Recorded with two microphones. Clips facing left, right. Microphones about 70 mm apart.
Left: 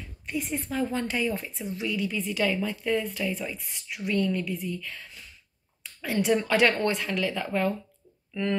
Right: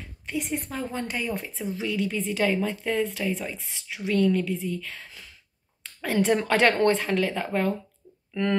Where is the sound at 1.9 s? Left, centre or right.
Right.